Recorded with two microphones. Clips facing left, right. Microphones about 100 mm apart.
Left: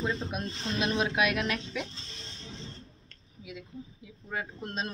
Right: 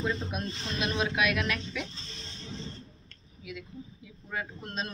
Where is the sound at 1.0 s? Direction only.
30° left (ahead or behind).